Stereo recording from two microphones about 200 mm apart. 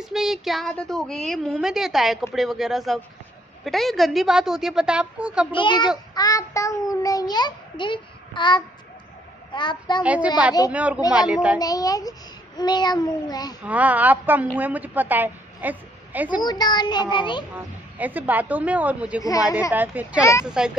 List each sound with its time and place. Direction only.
0.0 s a woman's voice: centre (ahead or behind)
5.5 s a child's voice: 25° left (ahead or behind)
10.0 s speech: 5° right (ahead or behind)
11.6 s a child's voice: 20° left (ahead or behind)
13.7 s a woman's voice: 10° right (ahead or behind)
16.3 s a child's voice: 20° left (ahead or behind)
17.9 s a woman's voice: 10° right (ahead or behind)